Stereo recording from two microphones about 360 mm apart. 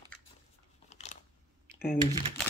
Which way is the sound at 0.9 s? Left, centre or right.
Centre.